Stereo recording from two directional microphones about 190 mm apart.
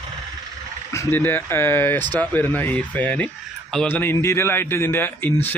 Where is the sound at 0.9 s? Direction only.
10° left (ahead or behind).